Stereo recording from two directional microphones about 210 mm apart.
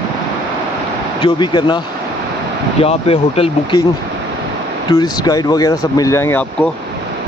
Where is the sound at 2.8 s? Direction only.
25° left (ahead or behind).